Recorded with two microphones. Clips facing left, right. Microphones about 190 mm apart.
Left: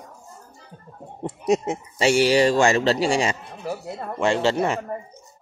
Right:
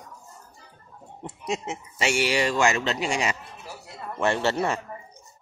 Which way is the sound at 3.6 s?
55° left (ahead or behind).